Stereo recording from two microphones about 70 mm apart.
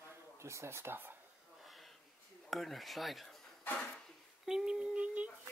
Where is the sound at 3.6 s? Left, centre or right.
Centre.